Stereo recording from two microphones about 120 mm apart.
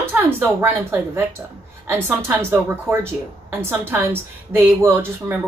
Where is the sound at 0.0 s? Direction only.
15° right (ahead or behind).